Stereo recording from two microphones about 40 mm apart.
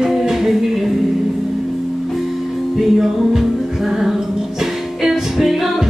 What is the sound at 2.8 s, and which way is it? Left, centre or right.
Music, centre.